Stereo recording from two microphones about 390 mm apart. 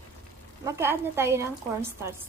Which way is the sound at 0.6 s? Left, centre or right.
Centre.